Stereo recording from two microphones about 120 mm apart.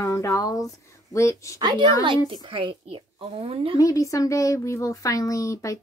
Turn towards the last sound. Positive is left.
turn(degrees=25)  # may be behind; listen again after turning